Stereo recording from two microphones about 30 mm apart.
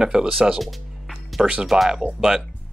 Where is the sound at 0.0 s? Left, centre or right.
Right.